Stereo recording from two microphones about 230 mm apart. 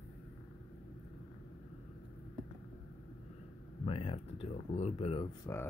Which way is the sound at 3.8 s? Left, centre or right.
Left.